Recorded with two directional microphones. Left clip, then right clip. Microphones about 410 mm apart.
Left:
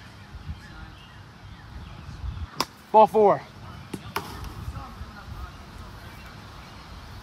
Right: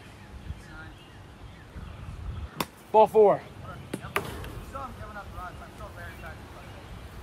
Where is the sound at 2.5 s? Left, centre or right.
Left.